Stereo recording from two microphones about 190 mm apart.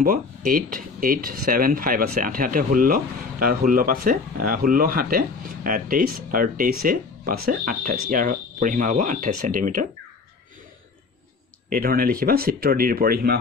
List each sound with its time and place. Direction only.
0.0 s speech: 50° right (ahead or behind)
11.7 s speech: 50° right (ahead or behind)